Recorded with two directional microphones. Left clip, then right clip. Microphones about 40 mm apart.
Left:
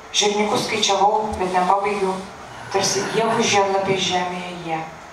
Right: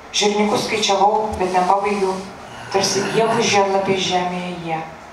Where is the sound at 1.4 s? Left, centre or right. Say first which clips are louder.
Right 2 dB; right.